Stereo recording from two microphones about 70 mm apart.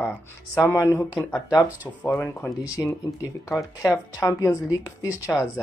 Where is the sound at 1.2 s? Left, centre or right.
Left.